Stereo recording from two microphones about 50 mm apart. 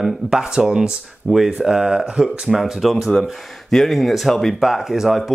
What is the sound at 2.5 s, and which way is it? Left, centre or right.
Speech, centre.